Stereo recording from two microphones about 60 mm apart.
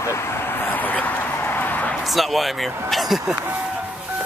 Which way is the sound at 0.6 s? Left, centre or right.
Left.